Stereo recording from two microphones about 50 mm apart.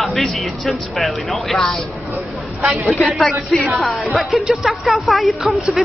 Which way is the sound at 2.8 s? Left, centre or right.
Centre.